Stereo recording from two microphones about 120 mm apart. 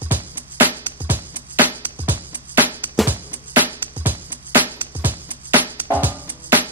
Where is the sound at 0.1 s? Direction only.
15° right (ahead or behind).